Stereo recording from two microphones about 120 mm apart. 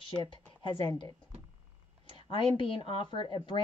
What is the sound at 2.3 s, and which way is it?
Speech, 45° left (ahead or behind).